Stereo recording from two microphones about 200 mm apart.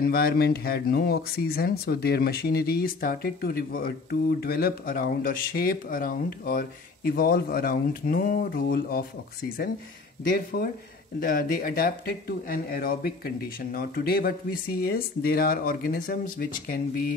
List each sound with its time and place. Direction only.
0.0 s speech: 50° left (ahead or behind)
10.2 s speech: 50° left (ahead or behind)